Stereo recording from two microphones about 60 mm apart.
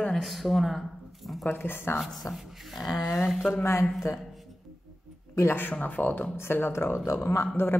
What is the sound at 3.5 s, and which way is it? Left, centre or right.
Speech, left.